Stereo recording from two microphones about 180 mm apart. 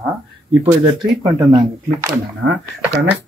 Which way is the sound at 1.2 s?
25° right (ahead or behind).